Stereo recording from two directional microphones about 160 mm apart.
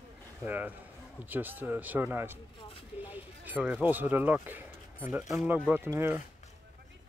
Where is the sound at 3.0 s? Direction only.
10° right (ahead or behind).